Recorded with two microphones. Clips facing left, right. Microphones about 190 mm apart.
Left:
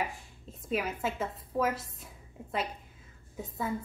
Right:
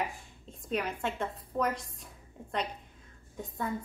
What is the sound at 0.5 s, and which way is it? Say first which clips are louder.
A woman's voice: left 1 dB; 5° left (ahead or behind).